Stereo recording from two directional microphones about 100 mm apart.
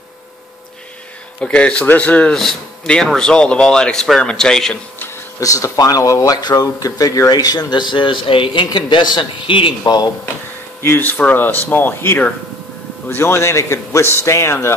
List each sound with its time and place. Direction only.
1.4 s speech: 10° left (ahead or behind)
5.4 s speech: 35° left (ahead or behind); by 8.6 s 60° left (ahead or behind)
8.6 s a man's voice: 50° left (ahead or behind)
10.8 s a man's voice: 20° left (ahead or behind)